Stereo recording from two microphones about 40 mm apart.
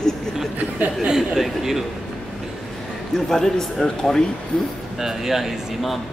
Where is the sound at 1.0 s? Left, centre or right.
Centre.